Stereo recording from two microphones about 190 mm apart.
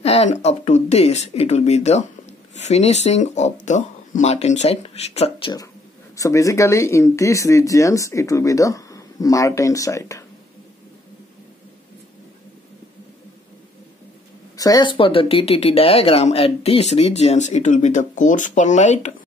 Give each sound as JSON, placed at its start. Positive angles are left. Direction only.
{"t": 0.0, "sound": "speech", "side_deg": 35}
{"t": 14.6, "sound": "speech", "side_deg": 20}